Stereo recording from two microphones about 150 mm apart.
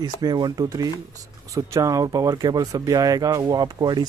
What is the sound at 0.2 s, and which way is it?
Speech, 30° right (ahead or behind).